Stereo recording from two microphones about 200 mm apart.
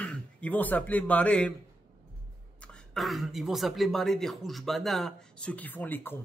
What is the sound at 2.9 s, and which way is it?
A man's voice, centre (ahead or behind).